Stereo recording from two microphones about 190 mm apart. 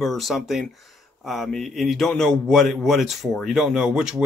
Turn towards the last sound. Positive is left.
turn(degrees=-5)  # may be behind; listen again after turning